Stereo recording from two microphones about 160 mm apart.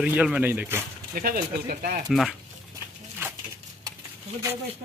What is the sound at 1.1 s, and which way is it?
Speech, 65° right (ahead or behind).